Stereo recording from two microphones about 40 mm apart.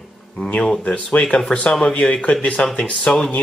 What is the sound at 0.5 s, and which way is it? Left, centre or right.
Speech, left.